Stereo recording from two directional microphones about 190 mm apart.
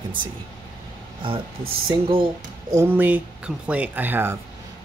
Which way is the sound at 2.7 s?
10° right (ahead or behind).